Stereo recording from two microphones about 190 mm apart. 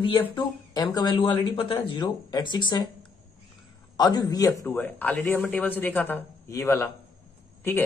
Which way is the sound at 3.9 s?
20° left (ahead or behind).